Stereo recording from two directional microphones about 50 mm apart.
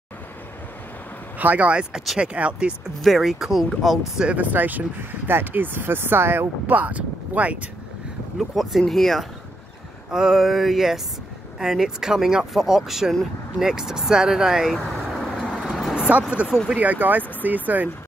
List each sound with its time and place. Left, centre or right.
1.4 s speech: right
3.0 s speech: centre
4.4 s speech: right
6.7 s speech: right
8.4 s speech: centre
10.1 s speech: centre
15.7 s vehicle: centre
16.4 s speech: right